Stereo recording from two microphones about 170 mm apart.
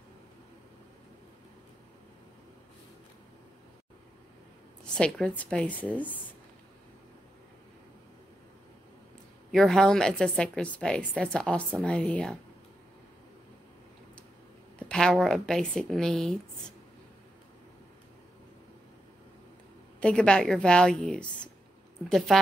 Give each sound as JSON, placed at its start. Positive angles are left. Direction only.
{"t": 4.9, "sound": "a woman's voice", "side_deg": 5}
{"t": 9.5, "sound": "a woman's voice", "side_deg": 0}
{"t": 14.9, "sound": "a woman's voice", "side_deg": 5}
{"t": 20.0, "sound": "a woman's voice", "side_deg": 5}